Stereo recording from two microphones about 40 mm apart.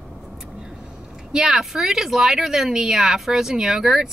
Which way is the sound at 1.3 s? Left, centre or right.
Centre.